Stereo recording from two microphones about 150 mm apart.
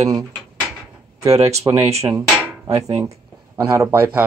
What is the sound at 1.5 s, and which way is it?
Speech, 20° right (ahead or behind).